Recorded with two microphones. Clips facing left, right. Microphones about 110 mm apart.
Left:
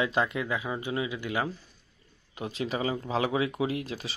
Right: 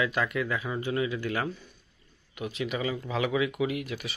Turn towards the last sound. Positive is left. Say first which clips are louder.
# even
turn(degrees=30)  # may be behind; listen again after turning